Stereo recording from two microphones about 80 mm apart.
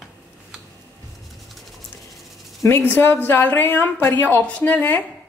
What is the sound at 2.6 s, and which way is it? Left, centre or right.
A woman's voice, left.